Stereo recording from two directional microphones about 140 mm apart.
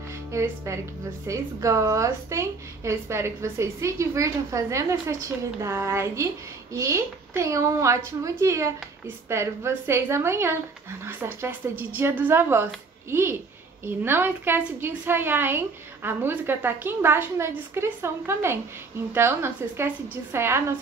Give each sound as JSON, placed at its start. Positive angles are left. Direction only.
{"t": 0.3, "sound": "a woman's voice", "side_deg": -20}